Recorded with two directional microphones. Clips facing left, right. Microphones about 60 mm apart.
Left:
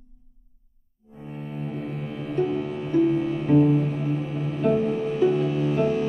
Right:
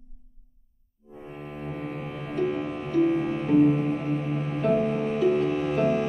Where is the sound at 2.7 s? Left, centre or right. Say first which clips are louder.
Left 2 dB; right.